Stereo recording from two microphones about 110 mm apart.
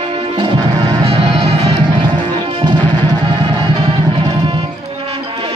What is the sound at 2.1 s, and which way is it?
Music, 45° right (ahead or behind).